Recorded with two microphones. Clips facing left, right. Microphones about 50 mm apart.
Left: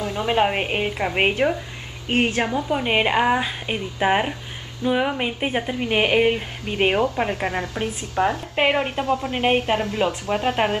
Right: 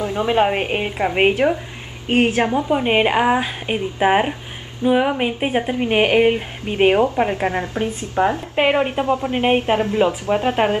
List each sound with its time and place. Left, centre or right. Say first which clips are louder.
0.0 s a sound: right 4 dB; right
0.3 s a woman's voice: right 2 dB; centre
7.4 s a woman's voice: right 4 dB; right
8.5 s a woman's voice: right 3 dB; centre
9.0 s a woman's voice: right 3 dB; right
10.3 s a woman's voice: right 3 dB; centre